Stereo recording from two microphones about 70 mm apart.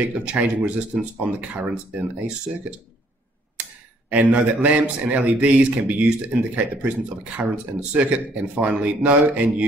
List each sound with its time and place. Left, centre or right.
0.1 s speech: centre
4.1 s a man's voice: centre